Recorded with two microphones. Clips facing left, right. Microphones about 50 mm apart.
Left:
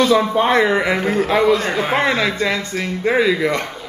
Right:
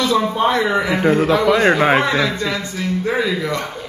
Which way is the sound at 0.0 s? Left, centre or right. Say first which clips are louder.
Left 2 dB; left.